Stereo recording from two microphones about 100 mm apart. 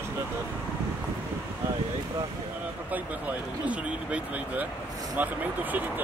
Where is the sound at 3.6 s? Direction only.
15° right (ahead or behind).